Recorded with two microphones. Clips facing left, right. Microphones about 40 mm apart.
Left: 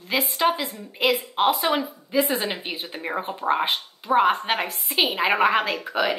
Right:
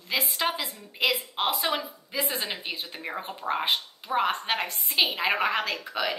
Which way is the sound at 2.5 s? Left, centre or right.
Centre.